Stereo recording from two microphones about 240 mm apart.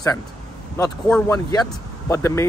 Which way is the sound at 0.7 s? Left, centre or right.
Centre.